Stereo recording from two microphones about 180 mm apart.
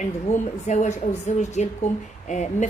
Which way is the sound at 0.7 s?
40° left (ahead or behind).